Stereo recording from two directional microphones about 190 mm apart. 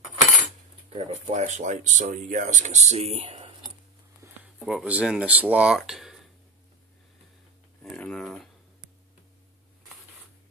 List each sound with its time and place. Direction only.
0.8 s speech: 35° right (ahead or behind)
4.6 s speech: 5° right (ahead or behind)
7.8 s speech: 5° left (ahead or behind)